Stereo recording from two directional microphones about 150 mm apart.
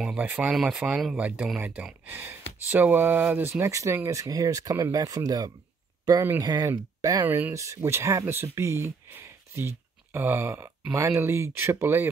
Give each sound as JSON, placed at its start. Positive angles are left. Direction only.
{"t": 0.0, "sound": "speech", "side_deg": -5}